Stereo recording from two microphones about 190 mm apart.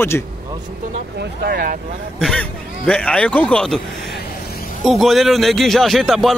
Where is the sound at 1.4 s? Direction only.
55° right (ahead or behind).